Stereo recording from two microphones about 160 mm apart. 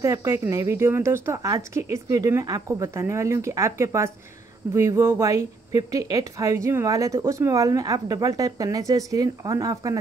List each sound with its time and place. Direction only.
0.0 s speech: 20° right (ahead or behind)